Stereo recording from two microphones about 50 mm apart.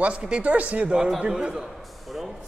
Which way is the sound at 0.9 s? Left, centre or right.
Centre.